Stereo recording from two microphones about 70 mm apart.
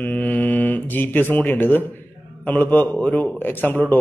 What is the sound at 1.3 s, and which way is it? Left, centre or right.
A man's voice, left.